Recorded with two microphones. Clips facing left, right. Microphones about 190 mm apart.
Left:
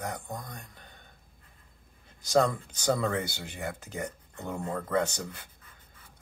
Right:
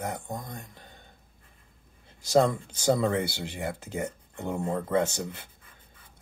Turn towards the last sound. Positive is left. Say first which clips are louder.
# right 2 dB
turn(degrees=-25)  # may be behind; listen again after turning